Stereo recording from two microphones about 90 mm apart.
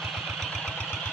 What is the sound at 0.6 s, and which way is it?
Vehicle, 15° left (ahead or behind).